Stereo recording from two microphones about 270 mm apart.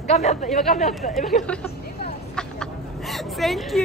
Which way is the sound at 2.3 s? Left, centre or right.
Centre.